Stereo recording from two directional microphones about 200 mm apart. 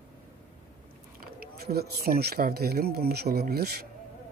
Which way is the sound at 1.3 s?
50° right (ahead or behind).